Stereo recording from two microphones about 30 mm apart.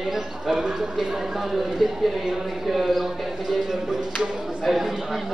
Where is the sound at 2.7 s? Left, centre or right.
Centre.